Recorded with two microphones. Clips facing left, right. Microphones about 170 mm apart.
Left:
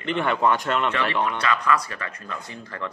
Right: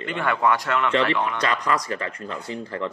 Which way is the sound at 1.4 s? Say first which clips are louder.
Left 1 dB; 35° right (ahead or behind).